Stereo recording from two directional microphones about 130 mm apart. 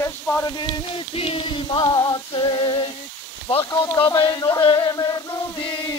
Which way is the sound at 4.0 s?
35° left (ahead or behind).